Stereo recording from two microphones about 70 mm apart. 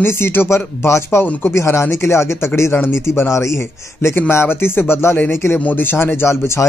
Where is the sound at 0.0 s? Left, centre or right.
Left.